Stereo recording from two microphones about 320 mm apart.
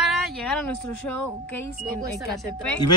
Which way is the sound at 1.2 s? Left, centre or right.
Left.